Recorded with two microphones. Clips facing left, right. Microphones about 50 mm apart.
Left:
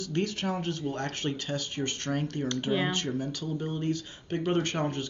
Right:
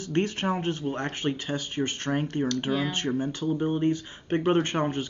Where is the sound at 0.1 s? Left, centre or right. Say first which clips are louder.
Right 4 dB; right.